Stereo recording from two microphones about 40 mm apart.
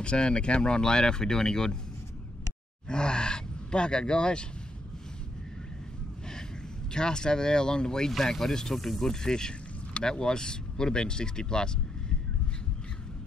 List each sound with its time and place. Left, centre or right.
0.0 s speech: left
2.9 s speech: left
6.9 s speech: centre